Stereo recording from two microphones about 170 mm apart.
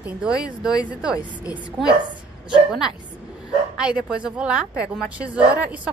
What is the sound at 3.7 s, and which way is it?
A woman's voice, 5° right (ahead or behind).